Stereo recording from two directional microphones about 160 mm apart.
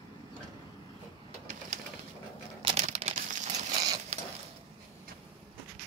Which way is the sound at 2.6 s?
40° right (ahead or behind).